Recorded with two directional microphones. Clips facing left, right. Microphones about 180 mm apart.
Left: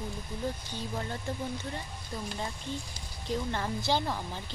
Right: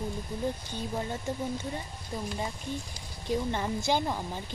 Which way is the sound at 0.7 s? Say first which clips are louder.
Right 3 dB; 20° right (ahead or behind).